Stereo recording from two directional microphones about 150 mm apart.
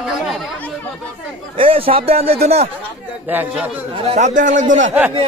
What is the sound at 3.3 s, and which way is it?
Speech, 10° right (ahead or behind).